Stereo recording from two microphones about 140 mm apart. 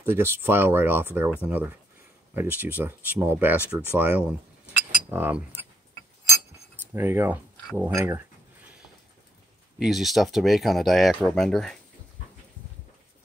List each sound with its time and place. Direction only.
0.0 s speech: 15° right (ahead or behind)
6.9 s speech: 15° right (ahead or behind)
9.8 s speech: centre (ahead or behind)